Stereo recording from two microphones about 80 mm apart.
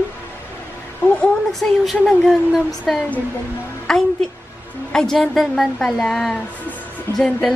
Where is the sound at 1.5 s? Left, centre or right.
Centre.